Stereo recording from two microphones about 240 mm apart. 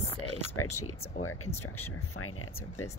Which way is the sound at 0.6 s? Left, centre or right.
Left.